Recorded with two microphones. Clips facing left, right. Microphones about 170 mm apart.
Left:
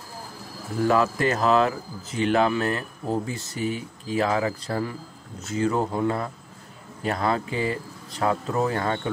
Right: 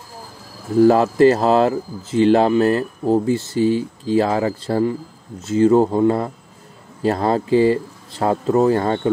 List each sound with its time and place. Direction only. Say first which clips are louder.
0.8 s speech: right 8 dB; 35° right (ahead or behind)